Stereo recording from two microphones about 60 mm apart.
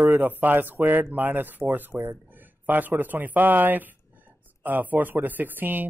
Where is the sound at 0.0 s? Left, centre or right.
Right.